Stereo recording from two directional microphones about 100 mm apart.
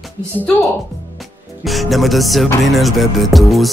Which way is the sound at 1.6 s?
Centre (ahead or behind).